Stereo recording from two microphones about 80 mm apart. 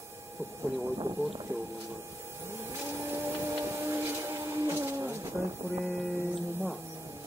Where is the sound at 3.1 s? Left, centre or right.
Right.